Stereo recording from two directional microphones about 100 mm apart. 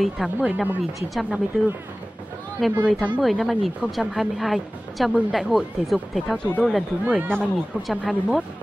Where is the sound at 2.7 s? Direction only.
15° right (ahead or behind).